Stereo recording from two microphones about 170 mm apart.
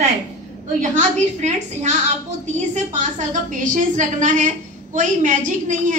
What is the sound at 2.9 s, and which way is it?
A woman's voice, 50° right (ahead or behind).